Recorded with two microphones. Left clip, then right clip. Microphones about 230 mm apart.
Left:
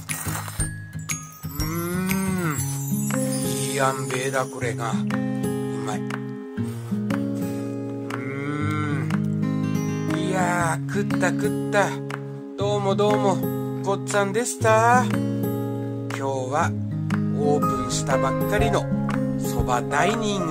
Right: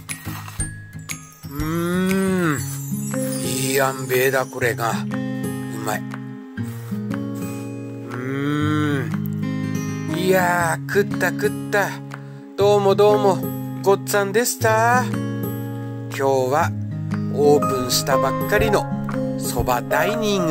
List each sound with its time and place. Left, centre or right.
1.7 s livestock: centre
2.1 s music: centre
3.7 s speech: right
5.1 s music: centre
8.3 s a sound: centre
9.1 s music: centre
10.2 s music: right
11.1 s speech: right
12.5 s music: right
13.8 s speech: right
15.0 s music: centre
16.2 s speech: right